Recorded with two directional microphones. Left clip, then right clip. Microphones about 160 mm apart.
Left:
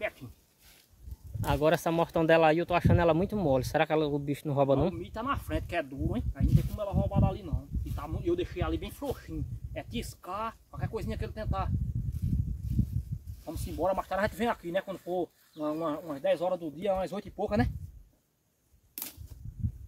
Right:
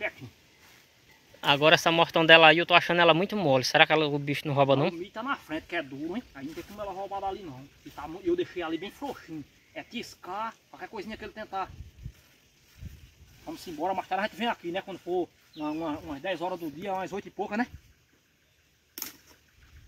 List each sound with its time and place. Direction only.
1.4 s speech: centre (ahead or behind)
5.1 s speech: 40° left (ahead or behind)
13.5 s speech: 35° left (ahead or behind)